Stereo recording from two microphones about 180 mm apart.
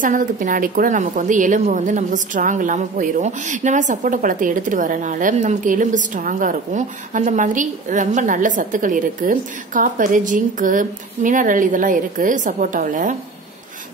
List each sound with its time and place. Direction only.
0.0 s a woman's voice: 45° right (ahead or behind)